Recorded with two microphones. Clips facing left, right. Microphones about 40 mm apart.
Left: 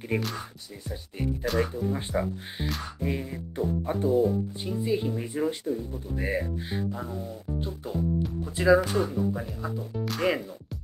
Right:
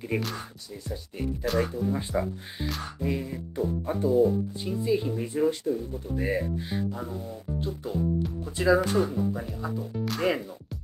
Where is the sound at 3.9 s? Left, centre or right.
Left.